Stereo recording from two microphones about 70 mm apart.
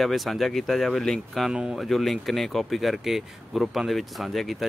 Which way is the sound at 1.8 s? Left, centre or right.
Centre.